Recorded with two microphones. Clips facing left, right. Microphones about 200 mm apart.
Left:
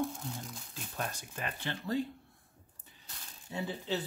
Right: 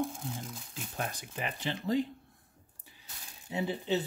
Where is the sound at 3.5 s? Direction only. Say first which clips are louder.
Right 4 dB; 15° right (ahead or behind).